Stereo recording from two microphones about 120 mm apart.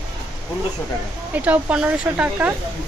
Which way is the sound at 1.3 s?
10° right (ahead or behind).